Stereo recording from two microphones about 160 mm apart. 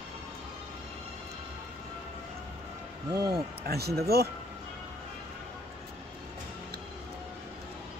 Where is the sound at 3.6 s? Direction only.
80° right.